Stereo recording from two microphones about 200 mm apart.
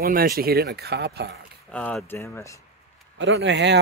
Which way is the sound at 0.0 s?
45° right (ahead or behind).